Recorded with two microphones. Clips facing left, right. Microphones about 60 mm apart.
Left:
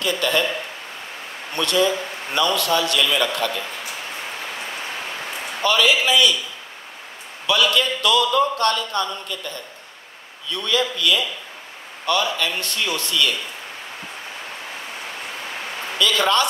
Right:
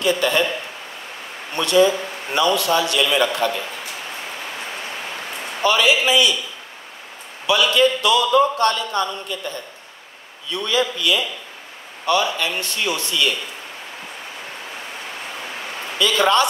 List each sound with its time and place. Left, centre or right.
0.0 s a man's voice: right
1.6 s a man's voice: right
5.6 s a man's voice: right
7.4 s a man's voice: right
10.5 s a man's voice: right
16.0 s a man's voice: right